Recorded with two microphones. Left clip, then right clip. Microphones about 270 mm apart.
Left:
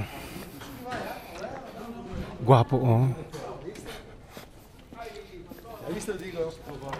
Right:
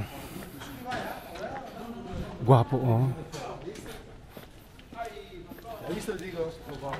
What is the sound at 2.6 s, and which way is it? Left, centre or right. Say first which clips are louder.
Speech: left 3 dB; left.